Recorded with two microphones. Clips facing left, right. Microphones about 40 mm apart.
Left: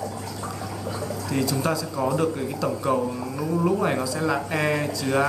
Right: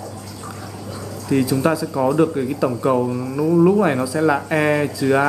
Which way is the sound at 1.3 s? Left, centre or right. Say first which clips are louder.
Right 8 dB; centre.